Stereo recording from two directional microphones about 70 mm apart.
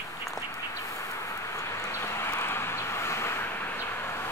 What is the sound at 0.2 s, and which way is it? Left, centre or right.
Bird, left.